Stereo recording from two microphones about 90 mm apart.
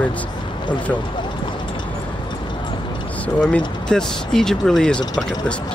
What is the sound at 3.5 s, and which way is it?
Speech, 5° left (ahead or behind).